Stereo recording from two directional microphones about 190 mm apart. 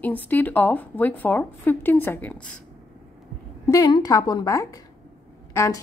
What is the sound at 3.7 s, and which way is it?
A woman's voice, 20° left (ahead or behind).